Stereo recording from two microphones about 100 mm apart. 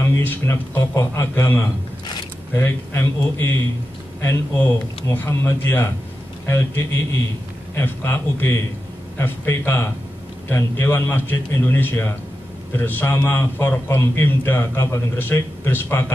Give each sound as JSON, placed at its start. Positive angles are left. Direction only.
{"t": 0.0, "sound": "a man's voice", "side_deg": 25}